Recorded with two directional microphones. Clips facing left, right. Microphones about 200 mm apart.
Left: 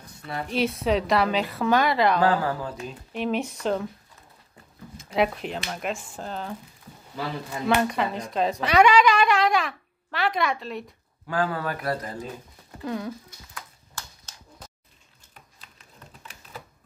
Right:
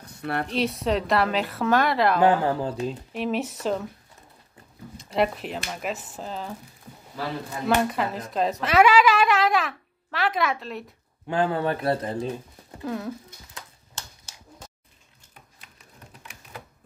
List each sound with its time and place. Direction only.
0.2 s speech: 65° right (ahead or behind)
0.5 s speech: centre (ahead or behind)
2.2 s a man's voice: 25° right (ahead or behind)
3.1 s speech: centre (ahead or behind)
4.9 s speech: centre (ahead or behind)
7.6 s speech: centre (ahead or behind)
11.2 s a man's voice: 25° right (ahead or behind)
12.8 s speech: centre (ahead or behind)
14.3 s a sound: 10° right (ahead or behind)